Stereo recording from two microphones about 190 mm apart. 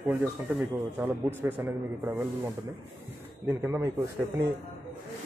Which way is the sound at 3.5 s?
15° right (ahead or behind).